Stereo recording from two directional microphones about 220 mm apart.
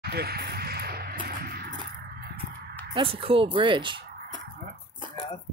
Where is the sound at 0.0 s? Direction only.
45° right (ahead or behind).